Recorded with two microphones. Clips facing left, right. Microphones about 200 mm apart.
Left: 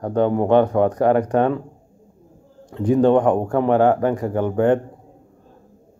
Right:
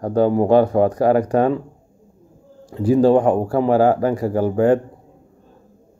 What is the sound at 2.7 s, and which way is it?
Speech, 5° right (ahead or behind).